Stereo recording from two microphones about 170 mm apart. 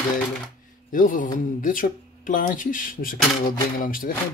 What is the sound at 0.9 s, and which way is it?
Speech, 50° left (ahead or behind).